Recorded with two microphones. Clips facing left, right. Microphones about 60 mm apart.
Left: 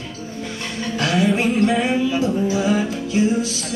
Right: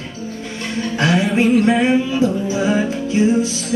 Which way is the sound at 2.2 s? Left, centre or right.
Right.